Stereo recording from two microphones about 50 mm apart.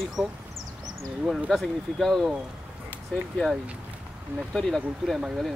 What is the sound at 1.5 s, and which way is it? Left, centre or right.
Speech, centre.